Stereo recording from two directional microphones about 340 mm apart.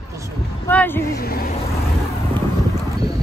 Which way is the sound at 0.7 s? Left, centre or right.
Centre.